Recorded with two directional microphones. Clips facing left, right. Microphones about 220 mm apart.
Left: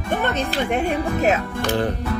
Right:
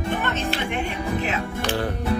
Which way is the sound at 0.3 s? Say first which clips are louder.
Left 4 dB; 40° left (ahead or behind).